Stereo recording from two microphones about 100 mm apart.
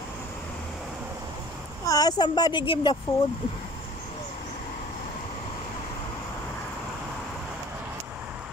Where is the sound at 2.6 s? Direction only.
60° left (ahead or behind).